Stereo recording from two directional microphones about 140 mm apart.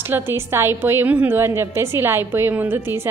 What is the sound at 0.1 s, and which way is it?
A woman's voice, 15° right (ahead or behind).